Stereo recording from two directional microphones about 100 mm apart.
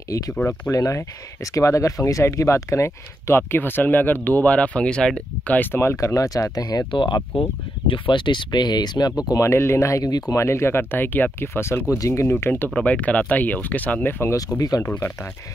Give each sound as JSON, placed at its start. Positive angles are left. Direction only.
{"t": 0.4, "sound": "speech", "side_deg": 25}
{"t": 6.9, "sound": "speech", "side_deg": 50}
{"t": 9.5, "sound": "speech", "side_deg": 25}
{"t": 10.4, "sound": "speech", "side_deg": 25}
{"t": 14.6, "sound": "speech", "side_deg": 40}
{"t": 14.9, "sound": "speech", "side_deg": 20}